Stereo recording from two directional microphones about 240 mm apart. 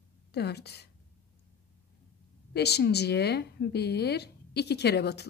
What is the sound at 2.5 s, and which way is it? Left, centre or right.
Speech, left.